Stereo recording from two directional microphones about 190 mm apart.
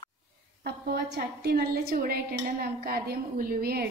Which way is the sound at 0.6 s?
55° right (ahead or behind).